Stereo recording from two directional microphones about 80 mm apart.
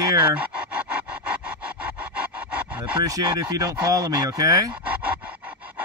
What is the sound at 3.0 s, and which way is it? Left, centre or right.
Speech, right.